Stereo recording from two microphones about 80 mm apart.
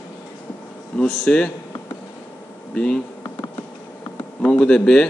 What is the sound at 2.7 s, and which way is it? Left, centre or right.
Speech, centre.